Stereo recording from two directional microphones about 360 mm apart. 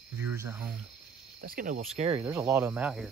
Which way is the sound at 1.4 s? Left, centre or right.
Right.